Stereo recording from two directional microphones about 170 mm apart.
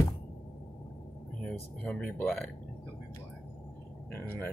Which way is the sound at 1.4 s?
5° left (ahead or behind).